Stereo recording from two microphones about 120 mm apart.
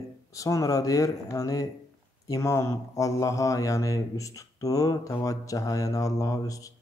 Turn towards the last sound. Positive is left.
turn(degrees=30)  # may be behind; listen again after turning